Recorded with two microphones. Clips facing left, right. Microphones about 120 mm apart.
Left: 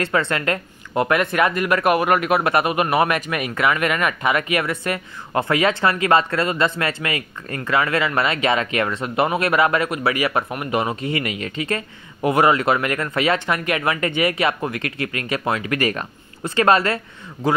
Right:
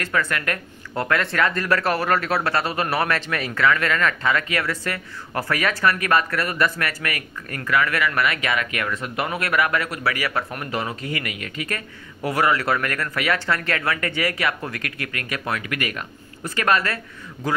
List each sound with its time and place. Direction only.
0.0 s speech: 25° left (ahead or behind)